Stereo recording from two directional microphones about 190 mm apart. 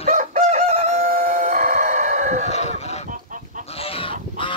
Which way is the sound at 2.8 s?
35° left (ahead or behind).